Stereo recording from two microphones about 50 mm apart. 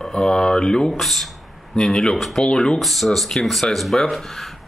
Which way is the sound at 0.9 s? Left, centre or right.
Centre.